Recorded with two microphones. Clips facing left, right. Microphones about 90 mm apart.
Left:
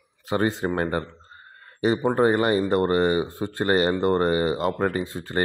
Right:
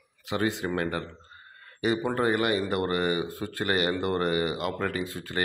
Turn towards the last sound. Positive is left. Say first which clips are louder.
# left 5 dB
turn(degrees=30)  # may be behind; listen again after turning